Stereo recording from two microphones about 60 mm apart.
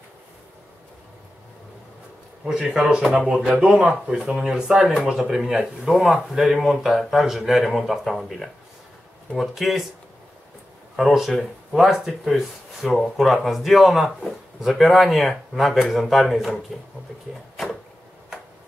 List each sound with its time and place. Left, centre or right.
2.4 s speech: centre
11.0 s speech: centre